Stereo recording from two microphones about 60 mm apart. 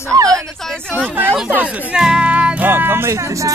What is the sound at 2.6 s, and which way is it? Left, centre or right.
Music, right.